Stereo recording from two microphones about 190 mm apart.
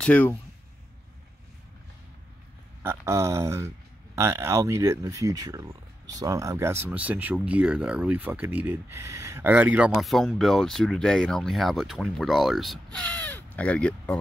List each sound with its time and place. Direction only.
0.0 s speech: 5° left (ahead or behind)
2.8 s speech: 15° right (ahead or behind); by 14.2 s 5° left (ahead or behind)